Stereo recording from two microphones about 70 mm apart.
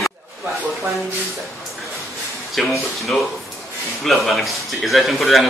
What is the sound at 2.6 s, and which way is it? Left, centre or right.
A man's voice, centre.